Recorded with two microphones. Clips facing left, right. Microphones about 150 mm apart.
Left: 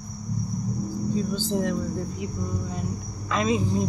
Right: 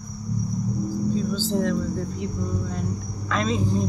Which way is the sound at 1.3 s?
15° left (ahead or behind).